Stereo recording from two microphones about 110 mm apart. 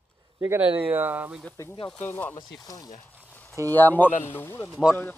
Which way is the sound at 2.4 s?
35° left (ahead or behind).